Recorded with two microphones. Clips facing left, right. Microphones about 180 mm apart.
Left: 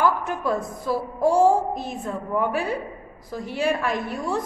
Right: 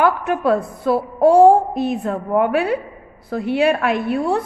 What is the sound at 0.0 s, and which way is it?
A woman's voice, 65° right (ahead or behind).